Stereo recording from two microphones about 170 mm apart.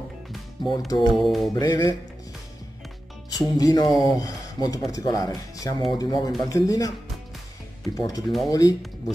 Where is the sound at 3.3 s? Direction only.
20° left (ahead or behind).